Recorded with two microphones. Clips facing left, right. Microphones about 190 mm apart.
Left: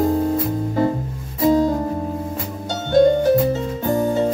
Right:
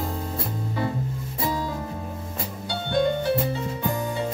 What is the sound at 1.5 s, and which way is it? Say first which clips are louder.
Music: left 14 dB; 45° left (ahead or behind).